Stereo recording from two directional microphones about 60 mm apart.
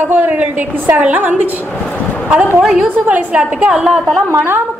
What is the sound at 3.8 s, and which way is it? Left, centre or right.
Speech, centre.